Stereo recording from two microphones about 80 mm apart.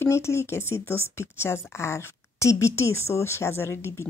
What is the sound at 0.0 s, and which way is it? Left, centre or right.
Speech, left.